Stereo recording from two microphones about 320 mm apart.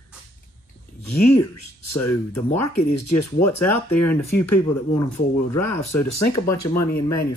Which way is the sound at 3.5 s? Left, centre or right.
Left.